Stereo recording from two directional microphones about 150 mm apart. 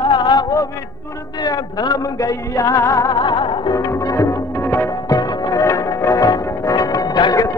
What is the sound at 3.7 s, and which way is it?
Music, 20° left (ahead or behind).